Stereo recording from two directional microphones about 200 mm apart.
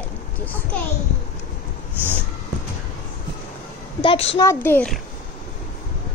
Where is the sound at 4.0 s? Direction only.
30° left (ahead or behind).